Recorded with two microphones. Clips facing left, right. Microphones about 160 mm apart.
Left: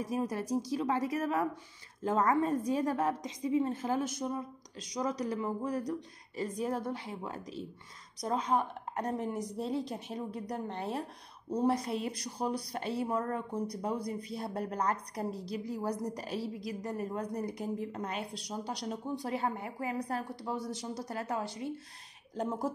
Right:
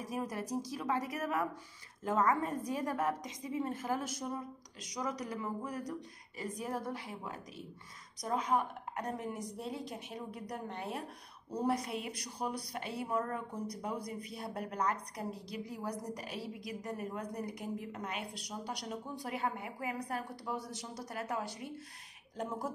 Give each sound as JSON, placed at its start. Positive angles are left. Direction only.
{"t": 0.1, "sound": "a woman's voice", "side_deg": 25}